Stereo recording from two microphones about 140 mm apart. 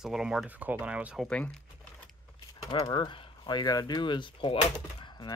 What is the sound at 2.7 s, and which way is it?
Speech, 30° left (ahead or behind).